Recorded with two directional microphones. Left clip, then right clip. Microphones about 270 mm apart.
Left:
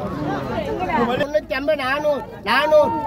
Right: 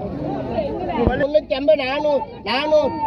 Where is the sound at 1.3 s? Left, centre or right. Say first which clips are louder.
Right 4 dB; left.